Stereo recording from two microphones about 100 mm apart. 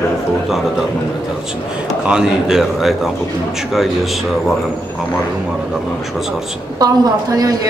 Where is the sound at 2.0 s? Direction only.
5° right (ahead or behind).